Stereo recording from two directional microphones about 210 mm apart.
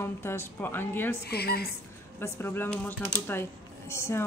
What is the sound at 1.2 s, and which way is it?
Speech, 50° left (ahead or behind).